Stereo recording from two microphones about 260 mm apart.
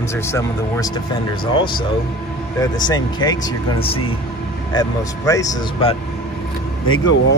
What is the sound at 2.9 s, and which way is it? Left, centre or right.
Speech, centre.